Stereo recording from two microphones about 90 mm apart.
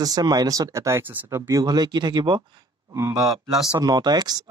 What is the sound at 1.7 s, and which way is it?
Speech, 55° right (ahead or behind).